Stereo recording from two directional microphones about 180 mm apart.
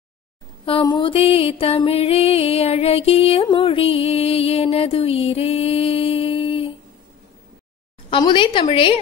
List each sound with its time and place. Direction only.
0.7 s music: 25° left (ahead or behind)
8.1 s a woman's voice: 25° left (ahead or behind)